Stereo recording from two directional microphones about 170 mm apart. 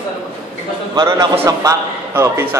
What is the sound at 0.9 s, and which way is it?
A man's voice, 20° right (ahead or behind).